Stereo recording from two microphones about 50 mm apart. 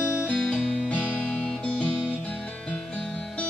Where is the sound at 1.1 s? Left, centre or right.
Left.